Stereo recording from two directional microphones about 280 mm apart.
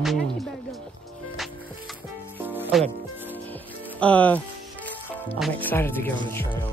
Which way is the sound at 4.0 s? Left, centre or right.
Centre.